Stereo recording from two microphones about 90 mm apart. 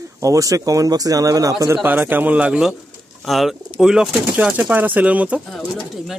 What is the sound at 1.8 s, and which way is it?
Speech, 20° right (ahead or behind).